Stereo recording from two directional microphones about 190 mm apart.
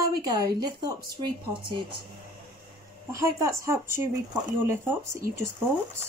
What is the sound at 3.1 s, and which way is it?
Speech, 15° right (ahead or behind).